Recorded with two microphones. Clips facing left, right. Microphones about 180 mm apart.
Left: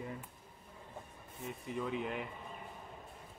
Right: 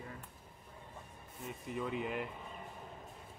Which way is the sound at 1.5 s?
Centre (ahead or behind).